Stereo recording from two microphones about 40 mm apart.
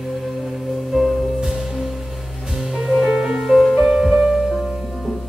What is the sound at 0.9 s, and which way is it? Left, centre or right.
Music, centre.